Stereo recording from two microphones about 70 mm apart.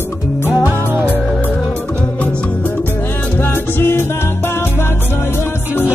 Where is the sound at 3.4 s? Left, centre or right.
Left.